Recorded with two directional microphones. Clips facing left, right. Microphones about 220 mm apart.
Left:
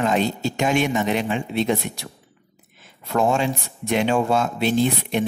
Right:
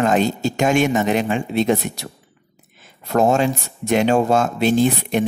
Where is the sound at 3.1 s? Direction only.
40° right (ahead or behind).